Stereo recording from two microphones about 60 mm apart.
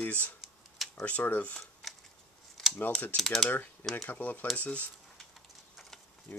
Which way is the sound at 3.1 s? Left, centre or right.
Centre.